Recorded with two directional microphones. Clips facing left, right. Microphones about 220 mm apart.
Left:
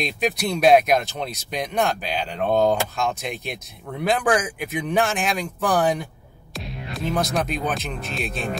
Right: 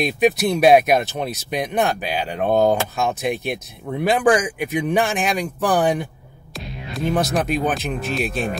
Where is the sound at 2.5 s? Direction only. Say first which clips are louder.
Right 2 dB; 40° right (ahead or behind).